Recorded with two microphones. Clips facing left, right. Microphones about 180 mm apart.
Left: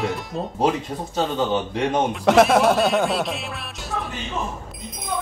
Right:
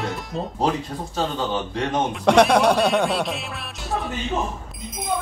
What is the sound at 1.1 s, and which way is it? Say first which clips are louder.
Speech: left 3 dB; 15° left (ahead or behind).